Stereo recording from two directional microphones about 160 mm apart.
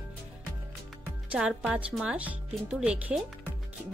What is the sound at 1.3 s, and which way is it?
Speech, 5° right (ahead or behind).